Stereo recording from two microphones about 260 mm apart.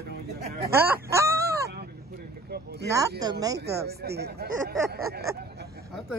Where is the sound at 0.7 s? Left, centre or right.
Centre.